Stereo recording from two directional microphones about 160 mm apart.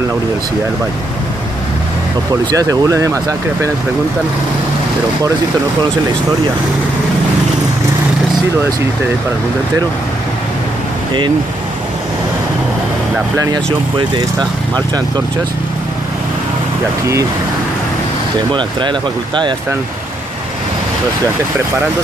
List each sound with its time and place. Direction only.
2.5 s speech: 20° right (ahead or behind)
18.5 s speech: 30° right (ahead or behind)